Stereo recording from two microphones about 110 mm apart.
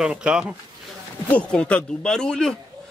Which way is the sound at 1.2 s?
10° left (ahead or behind).